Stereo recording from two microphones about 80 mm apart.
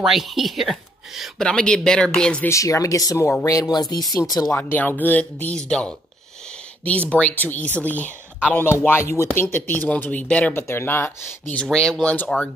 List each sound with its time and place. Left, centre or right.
0.0 s speech: centre
1.4 s speech: centre
2.4 s speech: left
4.6 s speech: left
10.5 s speech: left
11.5 s speech: centre